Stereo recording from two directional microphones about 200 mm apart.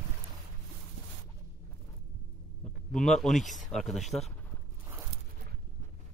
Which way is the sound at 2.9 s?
Centre (ahead or behind).